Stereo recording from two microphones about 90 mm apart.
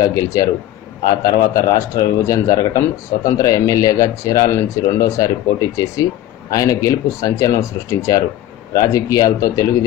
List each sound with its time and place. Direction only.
0.0 s speech: 40° left (ahead or behind)